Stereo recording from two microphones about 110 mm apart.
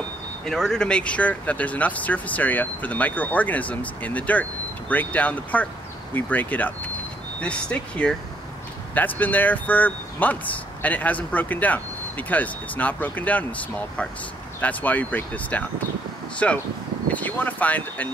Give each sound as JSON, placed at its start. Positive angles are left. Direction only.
{"t": 0.5, "sound": "speech", "side_deg": 5}